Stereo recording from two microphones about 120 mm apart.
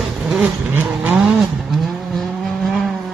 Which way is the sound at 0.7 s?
15° right (ahead or behind).